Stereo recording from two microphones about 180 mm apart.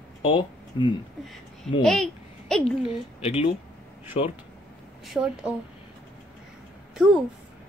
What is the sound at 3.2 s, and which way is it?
Speech, 35° left (ahead or behind).